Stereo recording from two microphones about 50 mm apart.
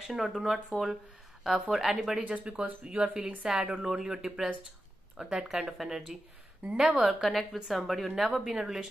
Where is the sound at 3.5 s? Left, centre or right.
Centre.